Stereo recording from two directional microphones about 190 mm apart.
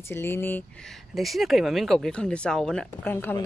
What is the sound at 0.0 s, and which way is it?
Speech, 10° left (ahead or behind).